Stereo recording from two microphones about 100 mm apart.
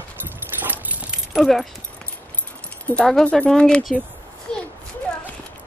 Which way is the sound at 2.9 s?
10° left (ahead or behind).